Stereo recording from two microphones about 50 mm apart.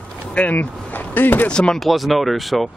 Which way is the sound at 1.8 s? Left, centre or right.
Centre.